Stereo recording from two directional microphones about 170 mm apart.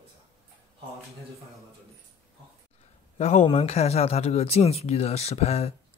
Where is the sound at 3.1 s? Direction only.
35° left (ahead or behind).